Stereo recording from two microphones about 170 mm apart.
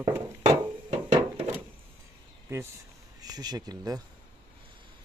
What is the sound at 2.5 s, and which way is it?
Speech, 15° right (ahead or behind).